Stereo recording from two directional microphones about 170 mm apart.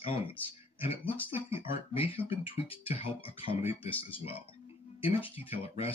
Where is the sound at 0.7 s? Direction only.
30° left (ahead or behind).